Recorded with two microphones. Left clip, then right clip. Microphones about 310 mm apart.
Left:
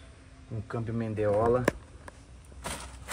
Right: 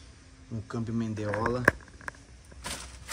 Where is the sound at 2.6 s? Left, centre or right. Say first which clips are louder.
Even; centre.